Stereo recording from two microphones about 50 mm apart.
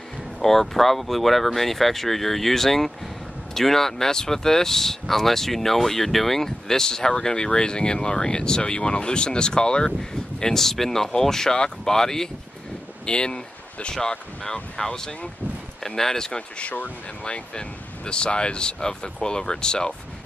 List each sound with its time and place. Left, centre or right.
0.4 s speech: centre